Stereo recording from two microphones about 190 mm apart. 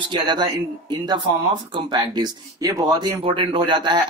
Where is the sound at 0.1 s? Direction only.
25° right (ahead or behind).